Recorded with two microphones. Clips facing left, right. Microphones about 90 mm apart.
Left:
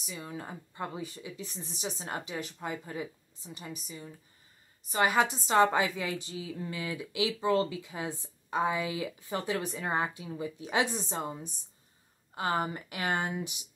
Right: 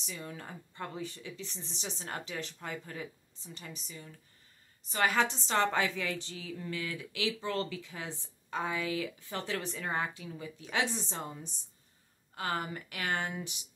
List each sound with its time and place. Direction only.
0.0 s a woman's voice: 10° left (ahead or behind)